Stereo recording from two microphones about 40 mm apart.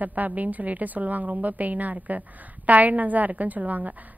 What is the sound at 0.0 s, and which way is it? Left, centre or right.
A woman's voice, right.